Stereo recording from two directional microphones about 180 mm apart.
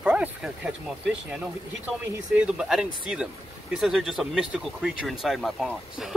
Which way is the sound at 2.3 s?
5° right (ahead or behind).